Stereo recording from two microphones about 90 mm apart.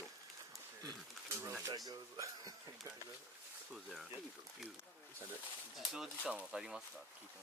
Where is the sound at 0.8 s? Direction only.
35° right (ahead or behind).